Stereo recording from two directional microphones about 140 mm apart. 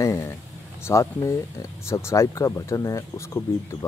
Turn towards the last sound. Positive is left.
turn(degrees=20)  # may be behind; listen again after turning